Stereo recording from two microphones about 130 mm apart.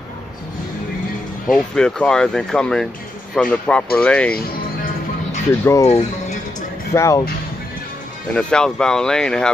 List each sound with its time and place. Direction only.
1.5 s speech: 5° left (ahead or behind)
5.5 s speech: 20° left (ahead or behind)
6.9 s speech: 25° left (ahead or behind)
8.4 s speech: 5° left (ahead or behind)